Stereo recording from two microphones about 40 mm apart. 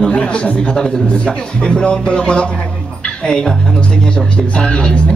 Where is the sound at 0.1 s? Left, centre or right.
Left.